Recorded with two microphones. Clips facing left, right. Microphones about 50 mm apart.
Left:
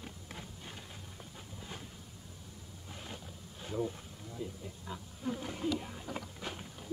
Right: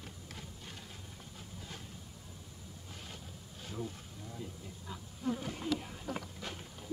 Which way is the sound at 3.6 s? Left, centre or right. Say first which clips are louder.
Left 6 dB; centre.